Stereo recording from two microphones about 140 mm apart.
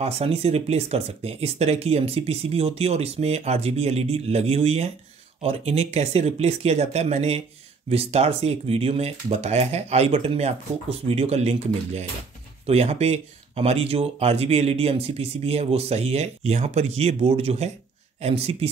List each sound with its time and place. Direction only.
0.0 s speech: 45° right (ahead or behind)